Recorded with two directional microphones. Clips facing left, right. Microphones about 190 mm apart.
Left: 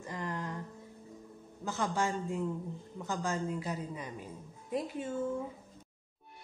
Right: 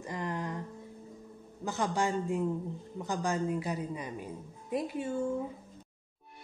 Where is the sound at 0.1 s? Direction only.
15° right (ahead or behind).